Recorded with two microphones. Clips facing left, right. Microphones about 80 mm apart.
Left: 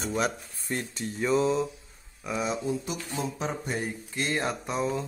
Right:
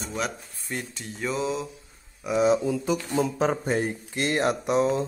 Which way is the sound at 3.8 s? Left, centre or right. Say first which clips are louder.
Right 5 dB; right.